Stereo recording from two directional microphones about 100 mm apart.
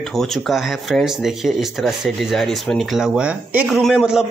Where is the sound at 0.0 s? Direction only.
5° left (ahead or behind).